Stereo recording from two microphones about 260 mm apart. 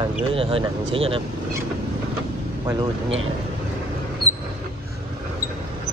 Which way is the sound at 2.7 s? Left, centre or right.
Centre.